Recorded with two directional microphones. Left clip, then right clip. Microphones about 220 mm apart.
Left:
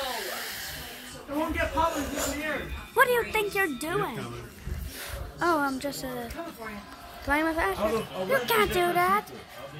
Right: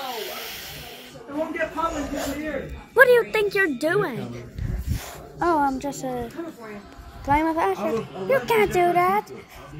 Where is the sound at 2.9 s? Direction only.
15° right (ahead or behind).